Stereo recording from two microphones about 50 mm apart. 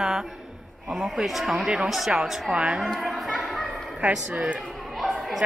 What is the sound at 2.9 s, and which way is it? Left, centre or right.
Chatter, centre.